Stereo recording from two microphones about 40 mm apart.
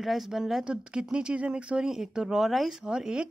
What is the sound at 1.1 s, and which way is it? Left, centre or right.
Speech, right.